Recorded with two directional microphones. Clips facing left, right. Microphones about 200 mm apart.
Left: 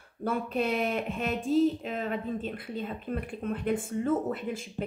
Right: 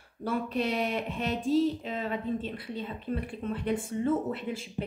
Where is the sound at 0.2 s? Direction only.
50° left (ahead or behind).